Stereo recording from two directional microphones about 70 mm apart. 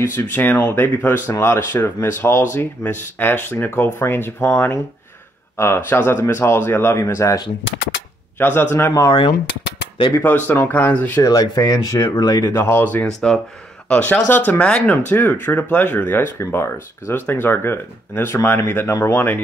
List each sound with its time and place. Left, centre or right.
0.0 s speech: left
8.4 s speech: left
8.7 s speech: left
10.2 s speech: left
11.2 s speech: left
12.2 s speech: left
12.4 s speech: left
13.0 s speech: centre
16.3 s speech: left